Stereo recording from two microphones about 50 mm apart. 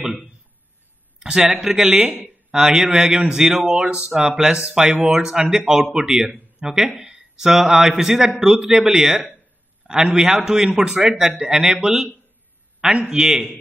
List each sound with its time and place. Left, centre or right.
1.2 s speech: centre